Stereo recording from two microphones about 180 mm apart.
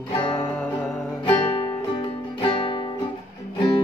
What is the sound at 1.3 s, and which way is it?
Music, 25° left (ahead or behind).